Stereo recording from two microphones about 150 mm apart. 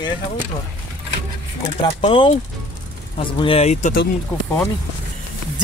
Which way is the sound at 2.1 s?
35° left (ahead or behind).